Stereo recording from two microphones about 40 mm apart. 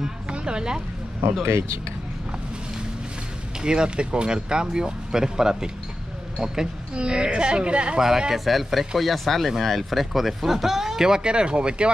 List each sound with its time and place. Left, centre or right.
0.3 s a woman's voice: right
3.6 s speech: right
7.0 s speech: right
8.0 s speech: centre